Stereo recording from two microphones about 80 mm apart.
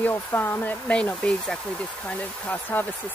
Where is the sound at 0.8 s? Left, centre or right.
Centre.